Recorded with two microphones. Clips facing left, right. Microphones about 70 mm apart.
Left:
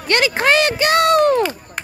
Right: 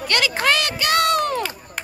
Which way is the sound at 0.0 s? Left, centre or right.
Left.